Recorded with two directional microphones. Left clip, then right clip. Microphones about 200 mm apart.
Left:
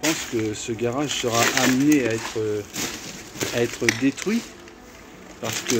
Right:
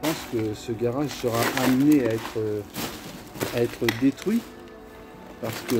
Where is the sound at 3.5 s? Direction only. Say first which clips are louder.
Left 3 dB; 5° right (ahead or behind).